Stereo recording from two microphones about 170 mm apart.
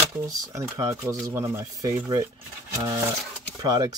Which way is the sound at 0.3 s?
20° right (ahead or behind).